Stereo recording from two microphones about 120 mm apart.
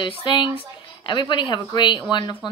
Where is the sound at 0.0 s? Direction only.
40° left (ahead or behind).